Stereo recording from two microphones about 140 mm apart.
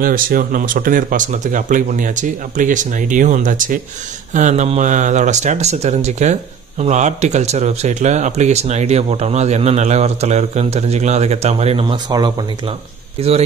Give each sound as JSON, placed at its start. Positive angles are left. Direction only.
{"t": 0.0, "sound": "speech", "side_deg": -90}
{"t": 4.3, "sound": "speech", "side_deg": -60}